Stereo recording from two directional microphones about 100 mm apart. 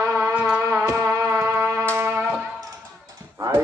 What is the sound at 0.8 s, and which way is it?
Music, 25° right (ahead or behind).